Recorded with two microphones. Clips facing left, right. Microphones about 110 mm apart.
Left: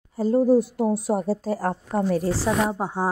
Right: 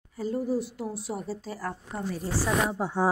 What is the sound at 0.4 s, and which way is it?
Speech, 45° left (ahead or behind).